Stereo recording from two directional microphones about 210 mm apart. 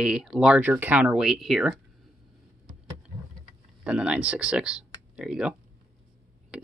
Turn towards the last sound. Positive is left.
turn(degrees=-5)  # may be behind; listen again after turning